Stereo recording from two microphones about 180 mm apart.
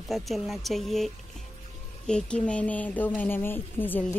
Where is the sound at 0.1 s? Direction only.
Centre (ahead or behind).